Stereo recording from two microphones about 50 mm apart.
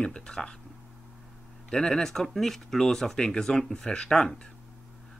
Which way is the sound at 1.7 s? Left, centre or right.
Centre.